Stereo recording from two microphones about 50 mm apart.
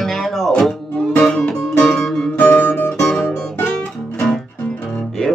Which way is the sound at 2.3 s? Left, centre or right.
Left.